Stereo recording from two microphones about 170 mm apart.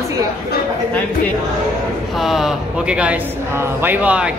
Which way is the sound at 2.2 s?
Centre (ahead or behind).